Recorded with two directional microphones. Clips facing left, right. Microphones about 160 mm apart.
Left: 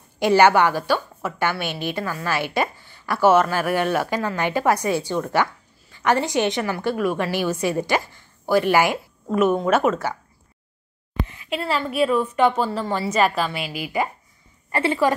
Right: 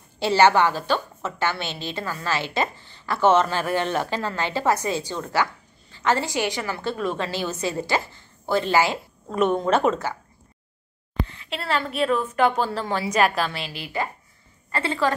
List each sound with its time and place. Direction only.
0.2 s a woman's voice: 15° left (ahead or behind)
11.2 s a woman's voice: 10° left (ahead or behind)